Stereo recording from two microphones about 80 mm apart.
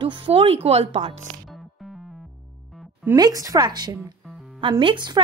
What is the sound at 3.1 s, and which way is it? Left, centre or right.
Speech, right.